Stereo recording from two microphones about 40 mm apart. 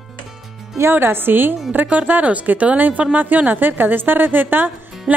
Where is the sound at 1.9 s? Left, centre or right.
Right.